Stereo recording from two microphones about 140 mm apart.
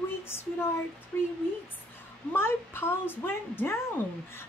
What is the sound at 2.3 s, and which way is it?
A woman's voice, 15° left (ahead or behind).